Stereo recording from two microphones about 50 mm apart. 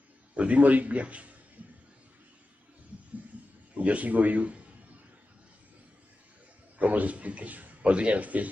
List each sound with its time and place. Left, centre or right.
0.3 s a man's voice: right
3.7 s a man's voice: right
6.8 s a man's voice: right